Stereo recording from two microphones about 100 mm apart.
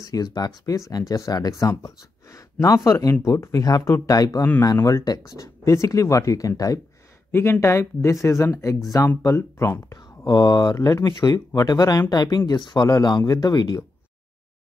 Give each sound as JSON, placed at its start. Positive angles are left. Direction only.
{"t": 0.0, "sound": "speech", "side_deg": 40}
{"t": 7.2, "sound": "speech", "side_deg": 25}
{"t": 9.9, "sound": "speech", "side_deg": 45}